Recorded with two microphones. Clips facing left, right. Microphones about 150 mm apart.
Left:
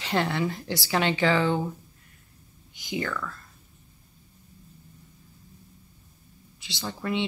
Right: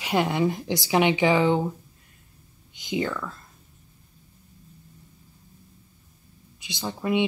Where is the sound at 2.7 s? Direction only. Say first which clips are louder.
Right 4 dB; 20° right (ahead or behind).